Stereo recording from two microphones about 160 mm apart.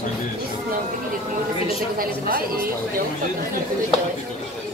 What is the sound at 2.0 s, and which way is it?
Speech, 65° right (ahead or behind).